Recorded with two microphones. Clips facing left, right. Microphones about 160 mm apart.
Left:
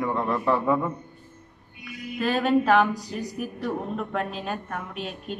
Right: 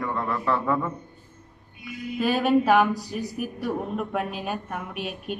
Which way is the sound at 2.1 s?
5° right (ahead or behind).